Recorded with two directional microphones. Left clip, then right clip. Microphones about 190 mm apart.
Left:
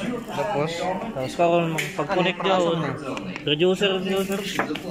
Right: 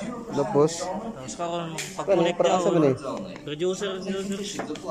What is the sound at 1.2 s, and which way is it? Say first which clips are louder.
Speech: left 13 dB; 15° left (ahead or behind).